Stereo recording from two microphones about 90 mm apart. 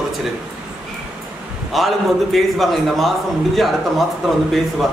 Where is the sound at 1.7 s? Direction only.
Centre (ahead or behind).